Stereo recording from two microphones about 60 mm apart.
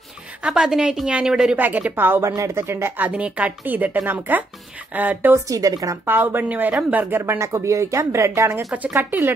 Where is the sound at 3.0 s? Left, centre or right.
Right.